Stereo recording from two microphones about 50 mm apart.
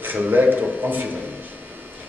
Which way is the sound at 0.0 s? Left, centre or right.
Right.